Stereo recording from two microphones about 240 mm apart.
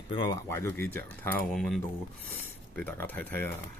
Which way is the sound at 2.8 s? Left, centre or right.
Centre.